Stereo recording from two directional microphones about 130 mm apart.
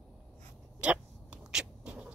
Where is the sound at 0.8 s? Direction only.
10° right (ahead or behind).